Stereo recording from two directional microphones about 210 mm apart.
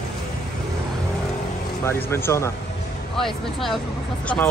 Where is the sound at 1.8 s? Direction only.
15° left (ahead or behind).